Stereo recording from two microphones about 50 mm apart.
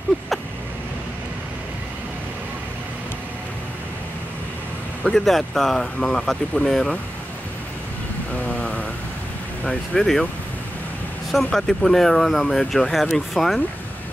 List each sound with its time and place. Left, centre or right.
5.2 s speech: centre
8.5 s a sound: left
9.7 s speech: centre
11.3 s speech: centre